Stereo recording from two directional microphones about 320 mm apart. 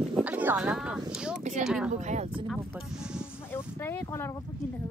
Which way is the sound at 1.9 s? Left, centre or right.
Right.